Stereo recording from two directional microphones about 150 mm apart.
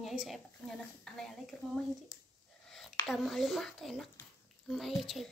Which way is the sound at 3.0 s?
Centre (ahead or behind).